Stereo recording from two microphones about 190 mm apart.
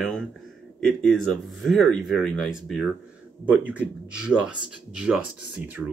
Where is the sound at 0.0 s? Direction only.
5° left (ahead or behind).